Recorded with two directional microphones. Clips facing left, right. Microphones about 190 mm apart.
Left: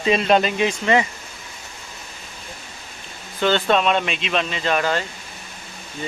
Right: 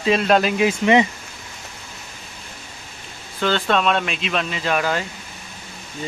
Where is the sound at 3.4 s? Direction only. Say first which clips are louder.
Left 2 dB; centre (ahead or behind).